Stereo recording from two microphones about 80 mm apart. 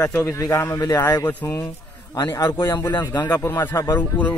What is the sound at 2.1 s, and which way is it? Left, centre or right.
Speech, left.